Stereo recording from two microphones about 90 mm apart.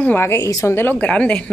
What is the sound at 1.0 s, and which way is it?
Speech, 10° left (ahead or behind).